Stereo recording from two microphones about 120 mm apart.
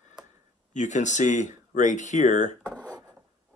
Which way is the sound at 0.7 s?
90° left.